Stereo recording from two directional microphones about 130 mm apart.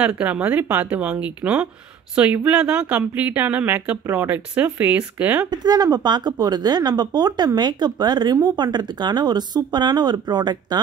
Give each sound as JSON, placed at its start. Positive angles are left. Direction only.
{"t": 0.0, "sound": "speech", "side_deg": -10}
{"t": 5.5, "sound": "speech", "side_deg": -30}